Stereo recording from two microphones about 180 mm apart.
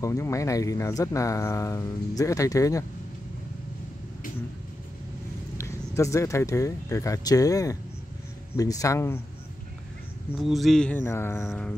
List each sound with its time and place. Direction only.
0.0 s speech: 15° left (ahead or behind)
5.6 s speech: 15° left (ahead or behind)
10.4 s speech: centre (ahead or behind)
11.4 s a sound: 5° left (ahead or behind)